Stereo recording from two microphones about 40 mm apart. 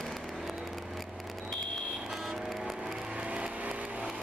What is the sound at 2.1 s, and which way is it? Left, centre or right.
Vehicle, centre.